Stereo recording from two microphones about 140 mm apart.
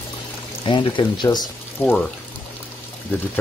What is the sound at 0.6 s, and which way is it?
Speech, 35° left (ahead or behind).